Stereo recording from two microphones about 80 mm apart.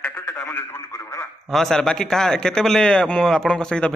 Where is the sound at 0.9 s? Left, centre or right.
Left.